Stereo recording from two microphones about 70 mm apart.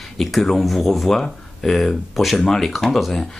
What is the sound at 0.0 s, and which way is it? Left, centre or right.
Speech, centre.